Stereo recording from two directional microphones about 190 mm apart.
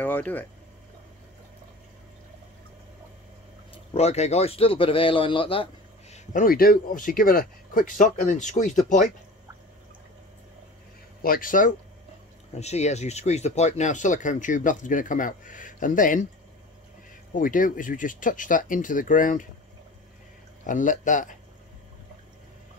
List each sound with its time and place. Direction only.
0.0 s speech: 10° left (ahead or behind)
3.7 s a man's voice: 35° left (ahead or behind)
11.2 s speech: 50° left (ahead or behind)
12.5 s speech: 35° left (ahead or behind)
17.4 s speech: 45° left (ahead or behind)
20.6 s speech: 45° left (ahead or behind)